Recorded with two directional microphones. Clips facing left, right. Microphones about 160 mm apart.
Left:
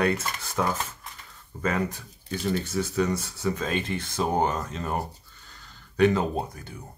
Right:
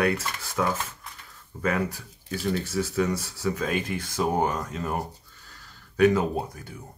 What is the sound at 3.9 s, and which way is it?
Speech, 10° right (ahead or behind).